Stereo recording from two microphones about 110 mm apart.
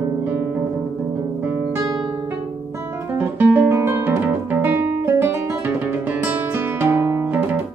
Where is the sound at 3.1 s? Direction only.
20° right (ahead or behind).